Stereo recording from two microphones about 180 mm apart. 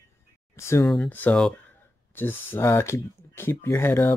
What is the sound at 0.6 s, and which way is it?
Speech, 15° left (ahead or behind).